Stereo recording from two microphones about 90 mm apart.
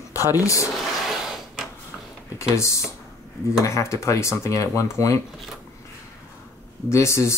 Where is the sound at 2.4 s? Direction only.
35° left (ahead or behind).